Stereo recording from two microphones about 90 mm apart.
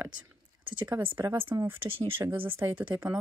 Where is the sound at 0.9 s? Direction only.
30° right (ahead or behind).